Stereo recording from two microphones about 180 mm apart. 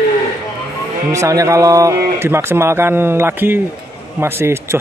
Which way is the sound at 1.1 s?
15° right (ahead or behind).